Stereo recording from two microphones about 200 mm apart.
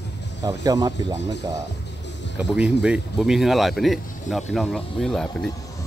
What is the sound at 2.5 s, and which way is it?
Speech, 5° right (ahead or behind).